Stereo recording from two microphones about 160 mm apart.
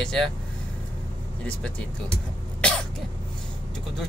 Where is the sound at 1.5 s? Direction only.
5° left (ahead or behind).